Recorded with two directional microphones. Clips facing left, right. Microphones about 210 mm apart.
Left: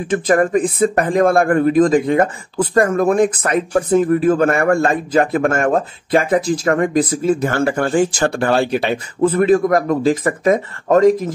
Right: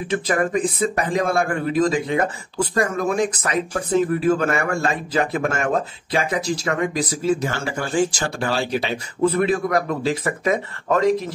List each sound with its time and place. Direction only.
0.1 s speech: 50° left (ahead or behind)